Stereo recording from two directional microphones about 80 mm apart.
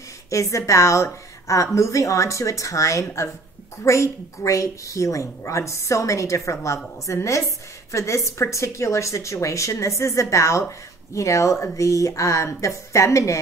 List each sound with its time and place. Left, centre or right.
0.3 s a woman's voice: left